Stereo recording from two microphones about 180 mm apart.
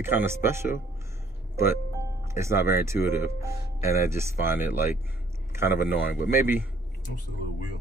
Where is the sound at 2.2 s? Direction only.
15° right (ahead or behind).